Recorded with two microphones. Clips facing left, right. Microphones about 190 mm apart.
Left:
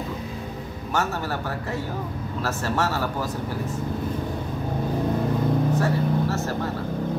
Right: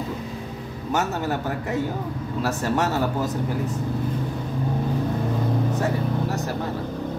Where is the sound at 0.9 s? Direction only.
20° right (ahead or behind).